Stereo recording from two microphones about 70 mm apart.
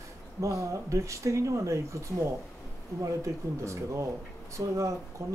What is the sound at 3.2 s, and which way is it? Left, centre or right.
Speech, right.